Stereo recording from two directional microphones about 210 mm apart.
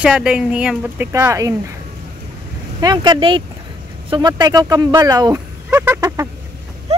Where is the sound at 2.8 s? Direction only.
20° right (ahead or behind).